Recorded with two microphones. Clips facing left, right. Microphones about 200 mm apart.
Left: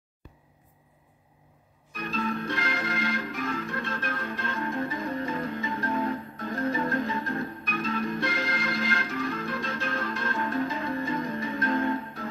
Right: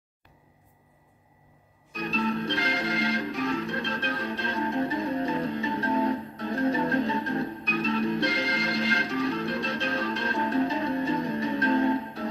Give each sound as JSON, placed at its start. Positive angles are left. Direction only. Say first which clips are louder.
{"t": 2.0, "sound": "organ", "louder": "right 3 dB", "side_deg": -30}
{"t": 8.6, "sound": "music", "louder": "right 2 dB", "side_deg": -30}